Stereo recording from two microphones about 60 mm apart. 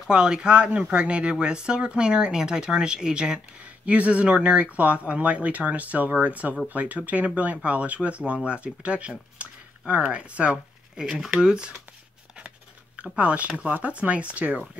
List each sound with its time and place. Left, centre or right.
0.1 s speech: centre